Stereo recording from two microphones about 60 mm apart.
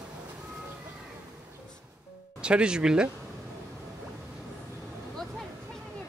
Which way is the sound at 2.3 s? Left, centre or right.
Centre.